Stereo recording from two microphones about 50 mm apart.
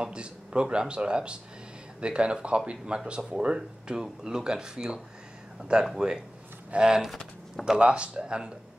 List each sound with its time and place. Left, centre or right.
0.0 s speech: centre